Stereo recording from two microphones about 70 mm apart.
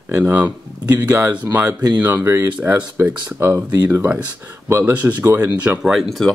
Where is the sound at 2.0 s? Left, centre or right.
Right.